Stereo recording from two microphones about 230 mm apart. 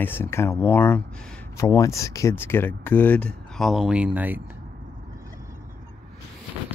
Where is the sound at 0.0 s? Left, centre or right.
Centre.